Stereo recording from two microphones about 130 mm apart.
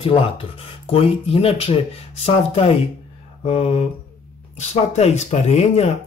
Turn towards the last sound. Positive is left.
turn(degrees=55)  # may be behind; listen again after turning